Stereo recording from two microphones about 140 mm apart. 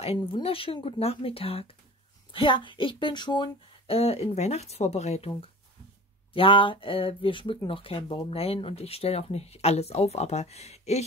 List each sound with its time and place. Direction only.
0.0 s speech: 45° left (ahead or behind)
6.3 s speech: 40° left (ahead or behind)